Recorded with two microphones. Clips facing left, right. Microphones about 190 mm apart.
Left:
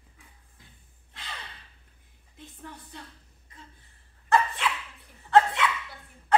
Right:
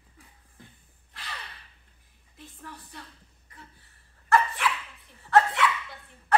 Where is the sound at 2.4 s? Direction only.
20° left (ahead or behind).